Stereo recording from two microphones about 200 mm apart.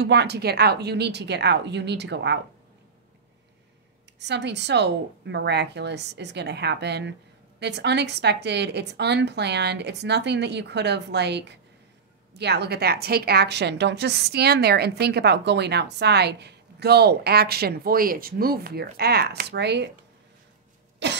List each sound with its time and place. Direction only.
0.0 s a woman's voice: 55° right (ahead or behind)
4.2 s a woman's voice: 60° right (ahead or behind)
21.0 s a woman's voice: 60° right (ahead or behind)